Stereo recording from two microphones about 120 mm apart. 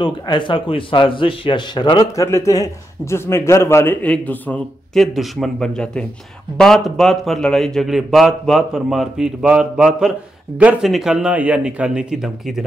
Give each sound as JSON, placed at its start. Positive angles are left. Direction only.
{"t": 0.0, "sound": "a man's voice", "side_deg": 40}
{"t": 2.1, "sound": "a man's voice", "side_deg": 25}
{"t": 4.9, "sound": "a man's voice", "side_deg": 0}